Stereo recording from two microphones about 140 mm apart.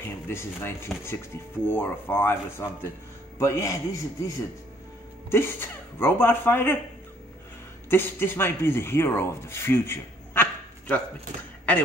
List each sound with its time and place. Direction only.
0.0 s a man's voice: 15° left (ahead or behind)
5.3 s speech: 15° left (ahead or behind)
7.9 s speech: 15° left (ahead or behind)